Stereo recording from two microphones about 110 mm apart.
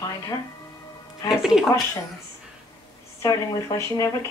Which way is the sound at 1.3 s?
5° right (ahead or behind).